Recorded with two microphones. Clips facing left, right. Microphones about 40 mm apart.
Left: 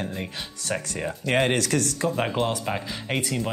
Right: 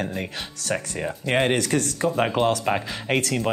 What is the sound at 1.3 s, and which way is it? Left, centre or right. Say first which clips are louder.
Speech: right 1 dB; centre.